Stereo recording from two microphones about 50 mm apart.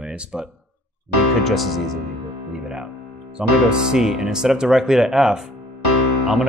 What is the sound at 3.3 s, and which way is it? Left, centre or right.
Speech, centre.